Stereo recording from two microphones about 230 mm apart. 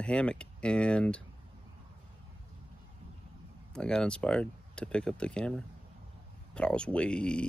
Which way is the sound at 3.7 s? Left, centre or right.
Centre.